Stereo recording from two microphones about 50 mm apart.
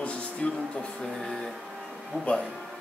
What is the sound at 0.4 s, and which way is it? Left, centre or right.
Speech, centre.